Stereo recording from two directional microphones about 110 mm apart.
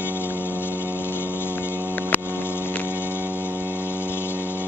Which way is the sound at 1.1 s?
20° left (ahead or behind).